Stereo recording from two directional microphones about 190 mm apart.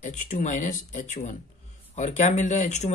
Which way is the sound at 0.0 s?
40° left (ahead or behind).